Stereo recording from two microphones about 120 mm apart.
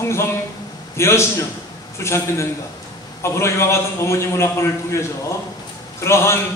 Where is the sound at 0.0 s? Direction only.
20° left (ahead or behind).